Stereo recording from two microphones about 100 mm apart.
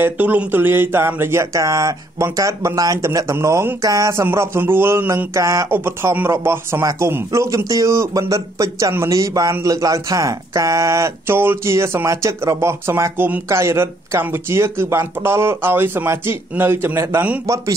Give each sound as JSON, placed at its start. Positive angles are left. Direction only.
{"t": 0.0, "sound": "speech", "side_deg": -15}